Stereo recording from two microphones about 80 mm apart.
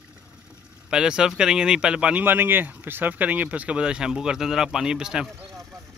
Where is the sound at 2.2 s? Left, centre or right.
Right; by 5.6 s centre.